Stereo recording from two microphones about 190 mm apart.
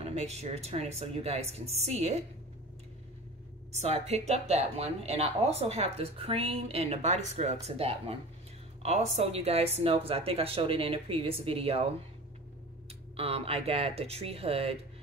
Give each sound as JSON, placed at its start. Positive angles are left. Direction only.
{"t": 0.0, "sound": "speech", "side_deg": -35}
{"t": 3.7, "sound": "speech", "side_deg": -35}
{"t": 13.1, "sound": "speech", "side_deg": -30}